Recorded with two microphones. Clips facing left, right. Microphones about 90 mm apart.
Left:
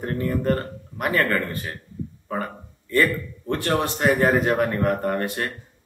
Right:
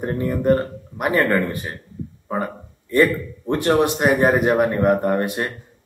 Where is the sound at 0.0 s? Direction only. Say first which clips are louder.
Right 3 dB; 20° right (ahead or behind).